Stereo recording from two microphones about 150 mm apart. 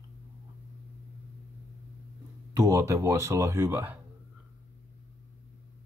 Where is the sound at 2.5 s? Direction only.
20° right (ahead or behind).